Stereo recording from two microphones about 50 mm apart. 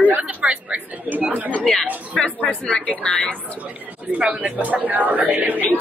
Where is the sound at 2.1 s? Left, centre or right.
Left.